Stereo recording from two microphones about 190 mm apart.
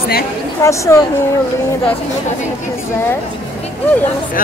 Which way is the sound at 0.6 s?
15° left (ahead or behind).